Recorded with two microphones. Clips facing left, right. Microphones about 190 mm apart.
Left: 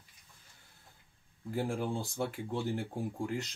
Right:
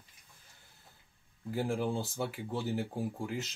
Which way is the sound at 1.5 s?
Centre (ahead or behind).